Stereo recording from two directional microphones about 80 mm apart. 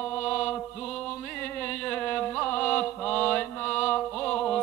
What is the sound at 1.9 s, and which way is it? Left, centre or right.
Mantra, centre.